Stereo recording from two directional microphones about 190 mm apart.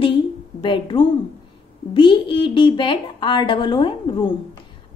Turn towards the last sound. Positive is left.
turn(degrees=25)  # may be behind; listen again after turning